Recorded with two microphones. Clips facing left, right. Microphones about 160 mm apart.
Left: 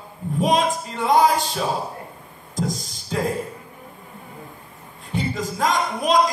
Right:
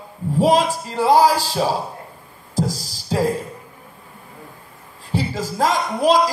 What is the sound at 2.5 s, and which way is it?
Music, 5° right (ahead or behind).